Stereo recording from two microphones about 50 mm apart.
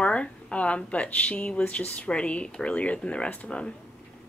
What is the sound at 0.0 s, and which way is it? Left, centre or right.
Speech, left.